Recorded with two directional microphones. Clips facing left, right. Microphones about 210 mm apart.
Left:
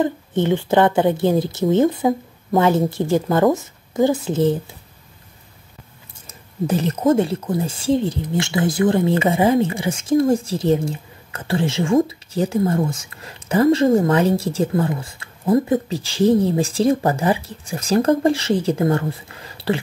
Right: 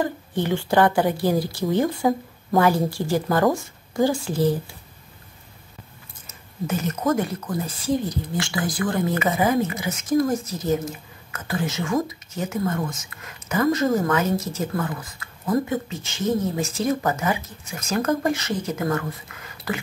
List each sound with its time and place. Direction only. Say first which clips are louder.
0.0 s speech: left 5 dB; 20° left (ahead or behind)
6.2 s speech: left 6 dB; 35° left (ahead or behind)